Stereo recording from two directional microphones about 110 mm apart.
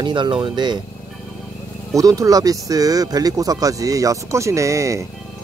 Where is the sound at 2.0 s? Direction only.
30° right (ahead or behind).